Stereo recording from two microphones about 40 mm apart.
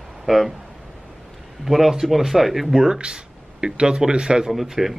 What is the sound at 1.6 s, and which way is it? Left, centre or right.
A man's voice, centre.